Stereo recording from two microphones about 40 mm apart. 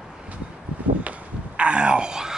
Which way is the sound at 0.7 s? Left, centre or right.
Right.